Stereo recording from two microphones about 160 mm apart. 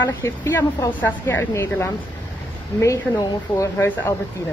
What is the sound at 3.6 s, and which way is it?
Speech, 15° left (ahead or behind).